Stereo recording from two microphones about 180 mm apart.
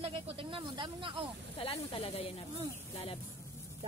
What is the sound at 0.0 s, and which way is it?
Snake, 30° right (ahead or behind).